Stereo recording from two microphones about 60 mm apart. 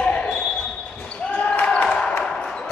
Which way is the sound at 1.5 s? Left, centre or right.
Left.